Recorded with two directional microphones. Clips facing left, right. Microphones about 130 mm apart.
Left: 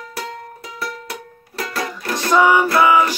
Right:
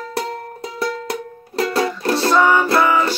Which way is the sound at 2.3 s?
10° left (ahead or behind).